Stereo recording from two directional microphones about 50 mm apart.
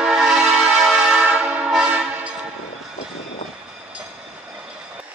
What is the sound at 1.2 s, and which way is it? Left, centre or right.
Train horn, right.